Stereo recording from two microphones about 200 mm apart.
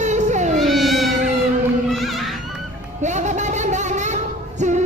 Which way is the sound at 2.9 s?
35° right (ahead or behind).